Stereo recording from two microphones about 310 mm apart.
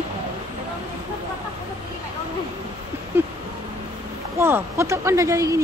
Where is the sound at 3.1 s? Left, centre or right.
Centre.